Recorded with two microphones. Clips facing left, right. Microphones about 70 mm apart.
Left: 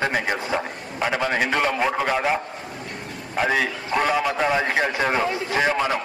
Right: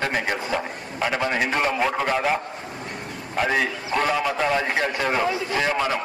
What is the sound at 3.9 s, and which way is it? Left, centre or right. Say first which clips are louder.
Speech: left 2 dB; centre.